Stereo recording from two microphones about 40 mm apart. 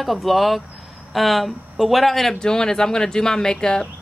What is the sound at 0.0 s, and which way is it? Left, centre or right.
Speech, centre.